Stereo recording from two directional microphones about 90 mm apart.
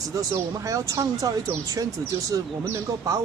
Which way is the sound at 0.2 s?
35° right (ahead or behind).